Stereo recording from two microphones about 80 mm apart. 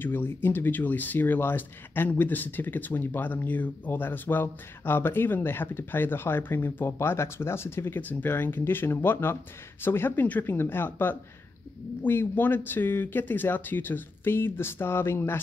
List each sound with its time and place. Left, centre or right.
0.0 s speech: left